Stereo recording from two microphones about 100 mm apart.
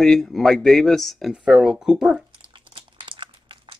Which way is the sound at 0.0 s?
5° left (ahead or behind).